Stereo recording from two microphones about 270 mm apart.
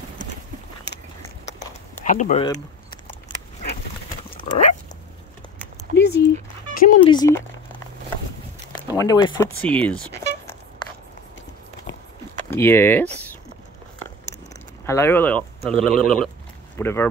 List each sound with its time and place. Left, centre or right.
0.9 s biting: left
2.0 s speech: left
2.5 s keys jangling: centre
4.3 s dog: centre
5.9 s a sound: left
7.0 s speech: centre
8.9 s speech: centre
12.4 s speech: centre
14.9 s speech: centre